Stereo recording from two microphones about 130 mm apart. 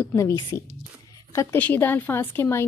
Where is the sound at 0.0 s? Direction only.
20° left (ahead or behind).